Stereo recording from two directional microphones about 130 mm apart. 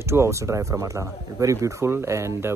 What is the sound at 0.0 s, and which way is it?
Speech, 20° right (ahead or behind).